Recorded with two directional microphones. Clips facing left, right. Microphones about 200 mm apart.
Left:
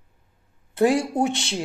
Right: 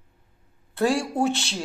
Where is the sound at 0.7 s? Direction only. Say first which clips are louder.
Left 3 dB; 20° left (ahead or behind).